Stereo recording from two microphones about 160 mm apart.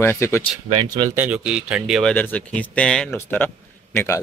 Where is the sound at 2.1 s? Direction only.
10° left (ahead or behind).